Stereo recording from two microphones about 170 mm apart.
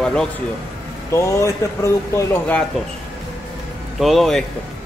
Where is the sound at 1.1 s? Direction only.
15° left (ahead or behind).